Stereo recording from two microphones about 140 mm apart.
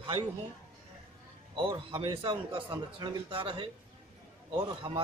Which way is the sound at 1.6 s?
35° right (ahead or behind).